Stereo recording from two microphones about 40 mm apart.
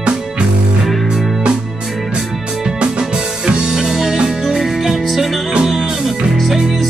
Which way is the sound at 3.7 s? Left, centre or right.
Centre.